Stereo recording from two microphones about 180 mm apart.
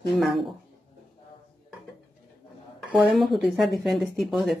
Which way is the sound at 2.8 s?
Centre (ahead or behind).